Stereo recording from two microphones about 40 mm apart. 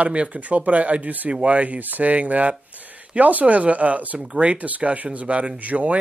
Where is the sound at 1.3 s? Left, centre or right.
Right.